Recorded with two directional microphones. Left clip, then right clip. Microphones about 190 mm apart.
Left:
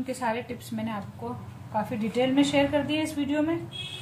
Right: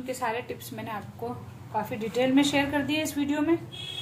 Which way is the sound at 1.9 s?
25° right (ahead or behind).